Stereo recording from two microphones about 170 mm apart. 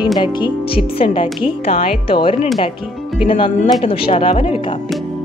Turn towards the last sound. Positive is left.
turn(degrees=35)  # may be behind; listen again after turning